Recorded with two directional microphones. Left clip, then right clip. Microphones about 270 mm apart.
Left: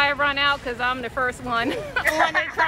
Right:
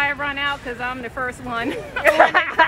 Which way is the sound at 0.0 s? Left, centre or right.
Centre.